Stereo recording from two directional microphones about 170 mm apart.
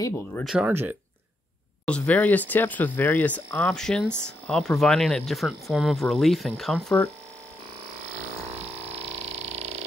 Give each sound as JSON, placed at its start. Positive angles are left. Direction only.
{"t": 0.6, "sound": "speech", "side_deg": -10}
{"t": 1.9, "sound": "speech", "side_deg": 5}
{"t": 8.5, "sound": "a sound", "side_deg": -35}